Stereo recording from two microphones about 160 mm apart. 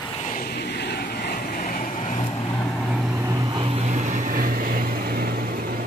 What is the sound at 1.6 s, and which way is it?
Vehicle, 50° left (ahead or behind).